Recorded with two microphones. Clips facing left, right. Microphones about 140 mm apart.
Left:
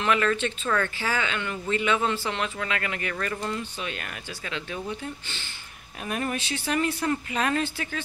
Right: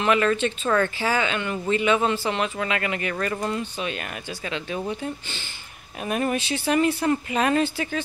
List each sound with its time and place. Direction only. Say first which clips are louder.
0.0 s speech: right 3 dB; 20° right (ahead or behind)
6.0 s speech: right 5 dB; 20° right (ahead or behind)